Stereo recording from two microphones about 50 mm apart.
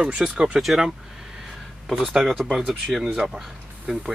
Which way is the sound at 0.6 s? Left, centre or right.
Centre.